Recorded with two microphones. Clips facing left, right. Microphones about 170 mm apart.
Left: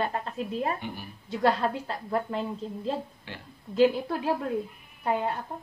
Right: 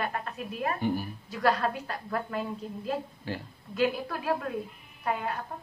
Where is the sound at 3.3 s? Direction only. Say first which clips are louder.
Right 7 dB; 40° right (ahead or behind).